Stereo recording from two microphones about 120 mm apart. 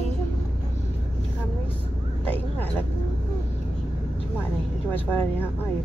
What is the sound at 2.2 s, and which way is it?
Speech, 15° left (ahead or behind).